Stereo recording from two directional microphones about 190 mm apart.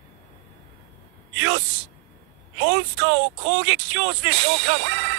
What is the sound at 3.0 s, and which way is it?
Speech, 75° right (ahead or behind).